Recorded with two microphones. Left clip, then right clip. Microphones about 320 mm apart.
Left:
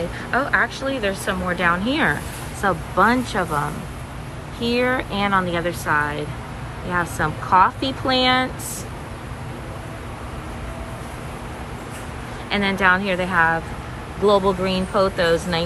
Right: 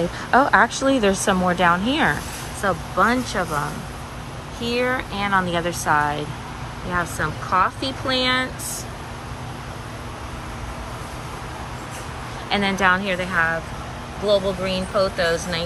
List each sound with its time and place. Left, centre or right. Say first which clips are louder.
0.3 s a woman's voice: right 4 dB; centre
12.4 s speech: left 1 dB; centre